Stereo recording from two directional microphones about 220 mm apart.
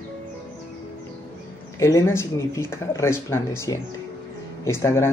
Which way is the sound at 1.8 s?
10° left (ahead or behind).